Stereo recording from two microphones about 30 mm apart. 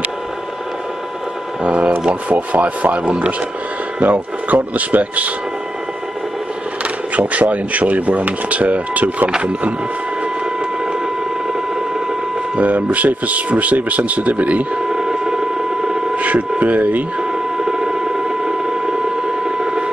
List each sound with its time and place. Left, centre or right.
1.6 s speech: right
2.3 s speech: right
7.2 s speech: right
12.5 s speech: right
14.9 s radio: right
16.2 s speech: right
17.2 s a sound: right